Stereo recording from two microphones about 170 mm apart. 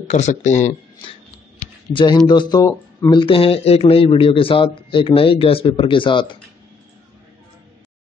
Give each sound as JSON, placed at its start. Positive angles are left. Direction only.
{"t": 0.1, "sound": "speech", "side_deg": 45}
{"t": 1.9, "sound": "speech", "side_deg": 30}
{"t": 3.2, "sound": "a man's voice", "side_deg": 30}